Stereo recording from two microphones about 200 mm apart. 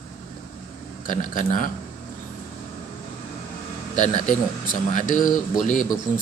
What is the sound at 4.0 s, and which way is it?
Speech, 40° left (ahead or behind).